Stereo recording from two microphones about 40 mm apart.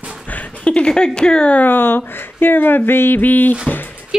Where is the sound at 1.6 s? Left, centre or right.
Left.